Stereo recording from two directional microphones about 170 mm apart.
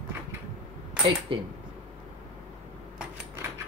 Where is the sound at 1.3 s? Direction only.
30° right (ahead or behind).